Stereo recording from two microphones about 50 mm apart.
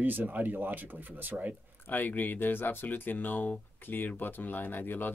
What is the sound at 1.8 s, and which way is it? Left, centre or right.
Speech, left.